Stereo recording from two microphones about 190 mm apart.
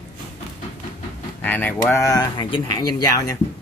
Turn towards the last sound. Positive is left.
turn(degrees=20)  # may be behind; listen again after turning